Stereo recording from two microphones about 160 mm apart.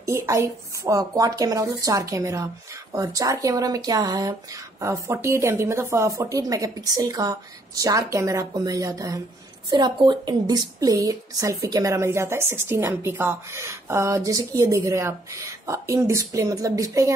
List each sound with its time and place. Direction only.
0.0 s a woman's voice: 20° right (ahead or behind)